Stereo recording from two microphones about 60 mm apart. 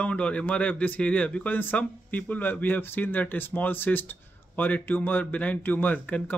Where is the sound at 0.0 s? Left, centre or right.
Left.